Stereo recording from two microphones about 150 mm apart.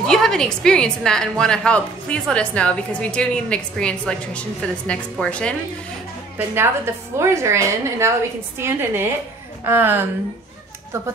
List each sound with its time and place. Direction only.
0.0 s a woman's voice: 5° left (ahead or behind)
6.3 s a woman's voice: 15° right (ahead or behind)